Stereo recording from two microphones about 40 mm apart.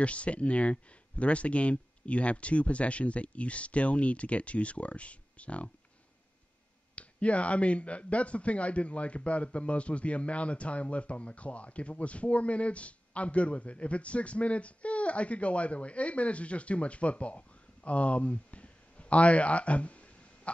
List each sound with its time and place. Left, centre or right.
0.0 s speech: left
7.0 s speech: left